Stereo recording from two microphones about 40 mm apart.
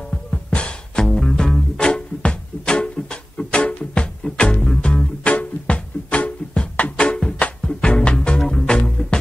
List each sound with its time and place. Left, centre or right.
0.1 s music: left
1.0 s music: centre